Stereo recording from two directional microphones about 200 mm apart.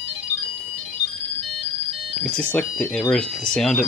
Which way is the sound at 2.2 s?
5° left (ahead or behind).